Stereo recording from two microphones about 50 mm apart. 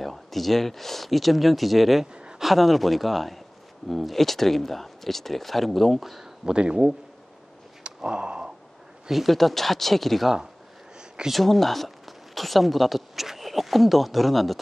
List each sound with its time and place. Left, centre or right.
0.0 s speech: centre
2.1 s a sound: centre
2.4 s speech: centre
6.4 s speech: centre
7.8 s a sound: centre
9.0 s speech: centre
11.3 s speech: centre